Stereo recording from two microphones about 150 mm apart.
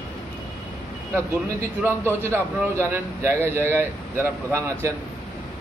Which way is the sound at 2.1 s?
15° right (ahead or behind).